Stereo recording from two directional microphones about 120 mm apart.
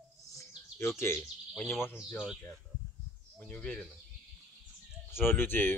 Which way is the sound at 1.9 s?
5° right (ahead or behind).